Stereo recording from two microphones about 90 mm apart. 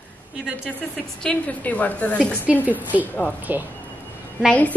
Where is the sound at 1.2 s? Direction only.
15° left (ahead or behind).